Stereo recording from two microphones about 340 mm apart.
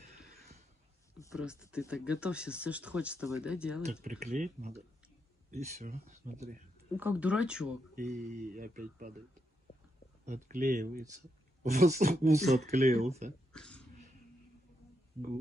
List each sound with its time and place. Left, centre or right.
1.3 s speech: centre
3.8 s speech: right
7.0 s speech: centre
7.9 s speech: right
10.2 s speech: right
13.5 s a sound: centre